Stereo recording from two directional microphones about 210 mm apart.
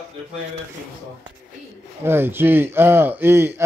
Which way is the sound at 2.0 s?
10° right (ahead or behind).